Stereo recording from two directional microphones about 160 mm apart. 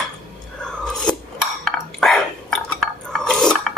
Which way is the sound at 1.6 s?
Centre (ahead or behind).